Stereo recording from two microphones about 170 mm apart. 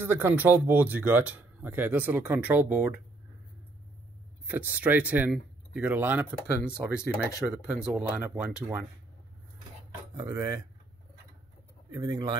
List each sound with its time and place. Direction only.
0.0 s speech: 15° right (ahead or behind)
4.5 s speech: 10° right (ahead or behind)
10.1 s speech: 20° right (ahead or behind)
11.9 s speech: 20° right (ahead or behind)